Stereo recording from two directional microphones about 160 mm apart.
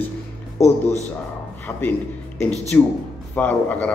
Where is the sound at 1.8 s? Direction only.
10° left (ahead or behind).